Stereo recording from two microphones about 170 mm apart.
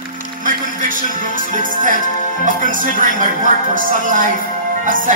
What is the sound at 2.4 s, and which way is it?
Speech, 50° right (ahead or behind).